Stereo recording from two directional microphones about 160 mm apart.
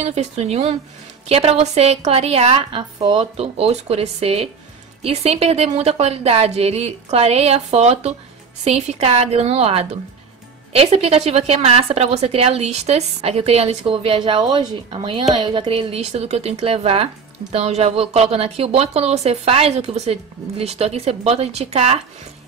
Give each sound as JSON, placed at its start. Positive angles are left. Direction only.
{"t": 0.0, "sound": "a woman's voice", "side_deg": -45}